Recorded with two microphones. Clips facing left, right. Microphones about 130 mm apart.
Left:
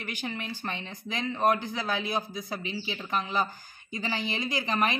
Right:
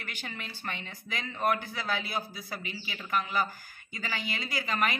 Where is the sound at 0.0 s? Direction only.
15° left (ahead or behind).